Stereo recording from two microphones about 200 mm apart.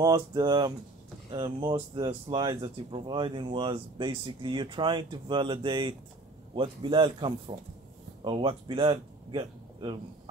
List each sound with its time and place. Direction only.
0.0 s a man's voice: 20° right (ahead or behind)